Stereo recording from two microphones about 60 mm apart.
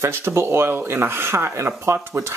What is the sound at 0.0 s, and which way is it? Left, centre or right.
Speech, right.